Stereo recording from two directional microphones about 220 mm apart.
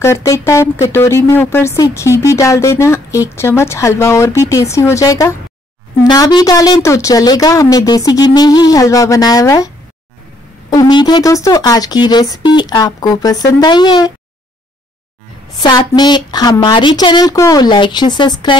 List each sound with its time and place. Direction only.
0.0 s a woman's voice: 10° left (ahead or behind)
10.7 s a woman's voice: 20° left (ahead or behind)
15.5 s a woman's voice: 20° left (ahead or behind)